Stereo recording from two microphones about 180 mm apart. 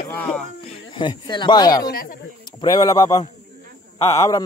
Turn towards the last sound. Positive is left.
turn(degrees=15)  # may be behind; listen again after turning